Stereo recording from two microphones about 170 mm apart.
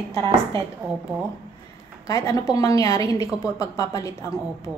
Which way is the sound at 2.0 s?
20° left (ahead or behind).